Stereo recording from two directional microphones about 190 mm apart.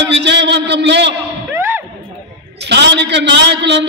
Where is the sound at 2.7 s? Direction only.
65° right (ahead or behind).